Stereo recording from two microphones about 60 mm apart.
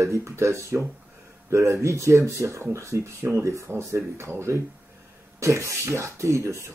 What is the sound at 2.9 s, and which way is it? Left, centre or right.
Speech, right.